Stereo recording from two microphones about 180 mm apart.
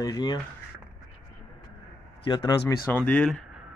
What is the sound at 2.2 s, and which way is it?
Speech, 25° left (ahead or behind).